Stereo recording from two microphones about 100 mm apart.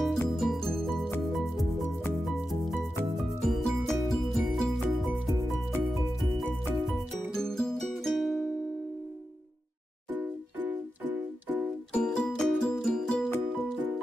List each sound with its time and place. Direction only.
0.0 s music: 5° left (ahead or behind)
7.3 s music: 5° left (ahead or behind)
10.1 s music: 15° right (ahead or behind)
11.9 s music: 10° left (ahead or behind)